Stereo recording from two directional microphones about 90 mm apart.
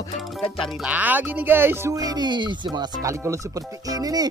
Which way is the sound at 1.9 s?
45° right (ahead or behind).